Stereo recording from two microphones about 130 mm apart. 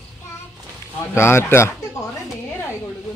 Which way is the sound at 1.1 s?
20° left (ahead or behind).